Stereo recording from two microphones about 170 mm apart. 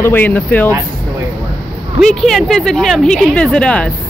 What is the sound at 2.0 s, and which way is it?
A woman's voice, centre (ahead or behind).